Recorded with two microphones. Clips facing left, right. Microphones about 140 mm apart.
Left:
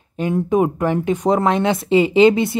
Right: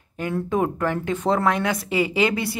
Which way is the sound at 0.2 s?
20° left (ahead or behind).